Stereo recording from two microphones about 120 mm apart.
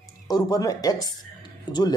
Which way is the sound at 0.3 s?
30° left (ahead or behind).